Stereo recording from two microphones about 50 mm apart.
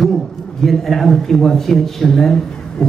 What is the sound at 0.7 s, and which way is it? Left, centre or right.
A man's voice, centre.